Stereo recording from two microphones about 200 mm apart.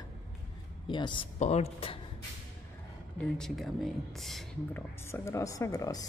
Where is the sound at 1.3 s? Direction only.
35° left (ahead or behind).